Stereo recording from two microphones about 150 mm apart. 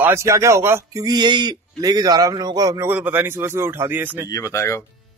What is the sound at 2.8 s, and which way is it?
Speech, 10° right (ahead or behind).